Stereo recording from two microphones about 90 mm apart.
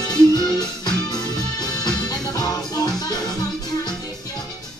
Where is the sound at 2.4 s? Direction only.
45° left (ahead or behind).